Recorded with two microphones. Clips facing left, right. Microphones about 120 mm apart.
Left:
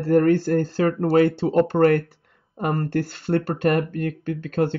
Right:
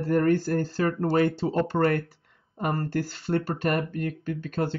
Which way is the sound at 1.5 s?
55° left (ahead or behind).